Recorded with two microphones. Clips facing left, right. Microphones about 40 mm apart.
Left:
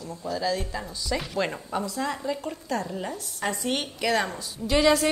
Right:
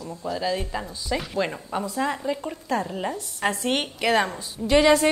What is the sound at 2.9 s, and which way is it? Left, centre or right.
A woman's voice, right.